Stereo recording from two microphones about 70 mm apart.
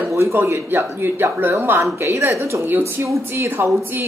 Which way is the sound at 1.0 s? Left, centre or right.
Right.